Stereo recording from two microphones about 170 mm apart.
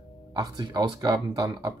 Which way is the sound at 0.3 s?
25° right (ahead or behind).